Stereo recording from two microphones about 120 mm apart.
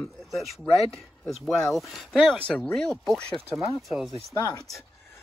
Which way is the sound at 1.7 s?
Centre (ahead or behind).